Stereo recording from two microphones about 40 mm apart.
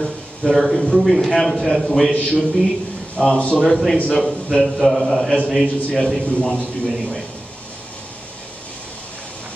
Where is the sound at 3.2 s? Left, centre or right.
Left.